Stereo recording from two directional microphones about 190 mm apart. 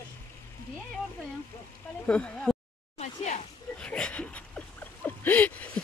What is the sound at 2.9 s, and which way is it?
Speech, 35° left (ahead or behind).